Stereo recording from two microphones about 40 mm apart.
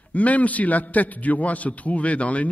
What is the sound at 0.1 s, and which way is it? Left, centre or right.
Mantra, left.